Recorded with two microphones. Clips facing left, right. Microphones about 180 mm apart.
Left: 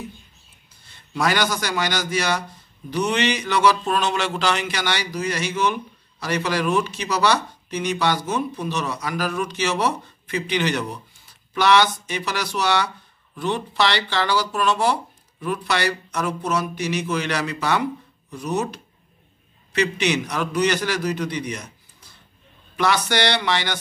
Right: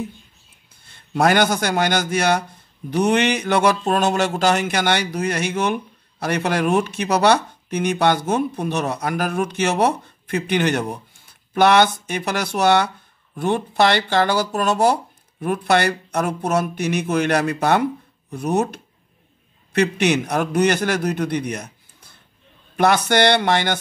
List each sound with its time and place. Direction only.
0.8 s a man's voice: 55° right (ahead or behind)